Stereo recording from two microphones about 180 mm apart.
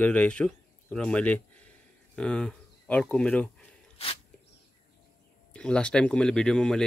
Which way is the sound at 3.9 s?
30° left (ahead or behind).